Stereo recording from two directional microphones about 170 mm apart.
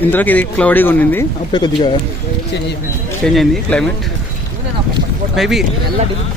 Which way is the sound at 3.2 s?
Centre (ahead or behind).